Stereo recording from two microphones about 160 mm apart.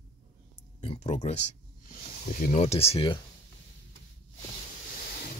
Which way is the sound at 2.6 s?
40° left (ahead or behind).